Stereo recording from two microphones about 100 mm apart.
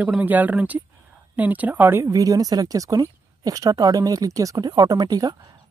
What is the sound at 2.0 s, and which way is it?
A woman's voice, 35° right (ahead or behind).